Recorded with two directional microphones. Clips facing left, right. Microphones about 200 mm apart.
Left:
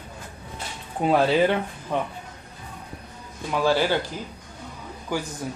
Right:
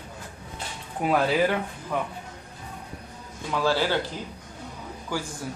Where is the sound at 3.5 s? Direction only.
15° left (ahead or behind).